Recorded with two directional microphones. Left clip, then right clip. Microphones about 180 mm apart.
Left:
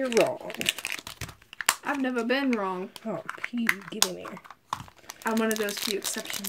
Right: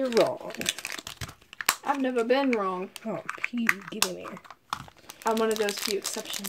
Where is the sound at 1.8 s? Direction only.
45° left (ahead or behind).